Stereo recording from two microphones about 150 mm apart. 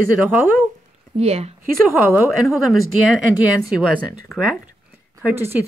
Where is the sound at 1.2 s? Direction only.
45° right (ahead or behind).